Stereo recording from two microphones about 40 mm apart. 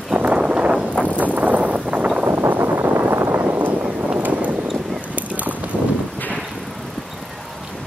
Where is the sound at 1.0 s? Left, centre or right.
Right.